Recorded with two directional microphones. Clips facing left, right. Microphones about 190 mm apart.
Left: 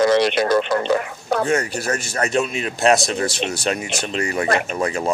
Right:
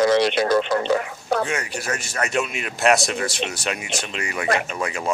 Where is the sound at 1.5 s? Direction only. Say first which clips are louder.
Left 6 dB; 40° left (ahead or behind).